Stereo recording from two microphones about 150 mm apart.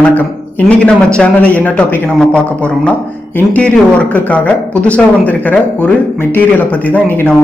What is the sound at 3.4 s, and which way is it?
Speech, 10° left (ahead or behind).